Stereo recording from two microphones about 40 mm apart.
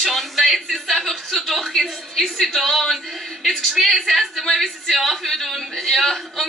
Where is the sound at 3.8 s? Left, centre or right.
Centre.